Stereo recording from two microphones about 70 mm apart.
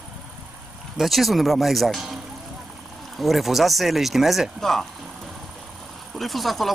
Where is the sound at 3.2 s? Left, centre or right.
Centre.